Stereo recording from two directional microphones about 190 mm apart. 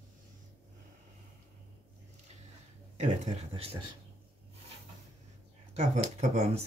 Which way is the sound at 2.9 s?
35° right (ahead or behind).